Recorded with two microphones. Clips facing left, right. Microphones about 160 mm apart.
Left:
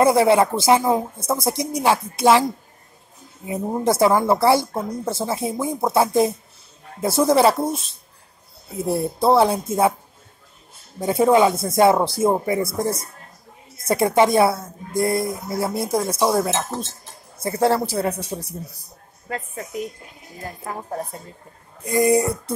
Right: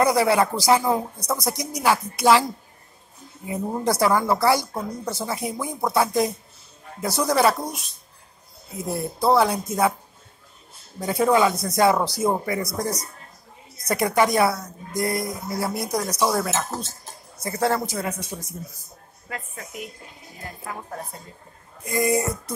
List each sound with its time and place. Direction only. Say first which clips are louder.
0.0 s speech: left 4 dB; 25° left (ahead or behind)
3.4 s speech: left 3 dB; 20° left (ahead or behind)
11.0 s a man's voice: left 4 dB; 25° left (ahead or behind)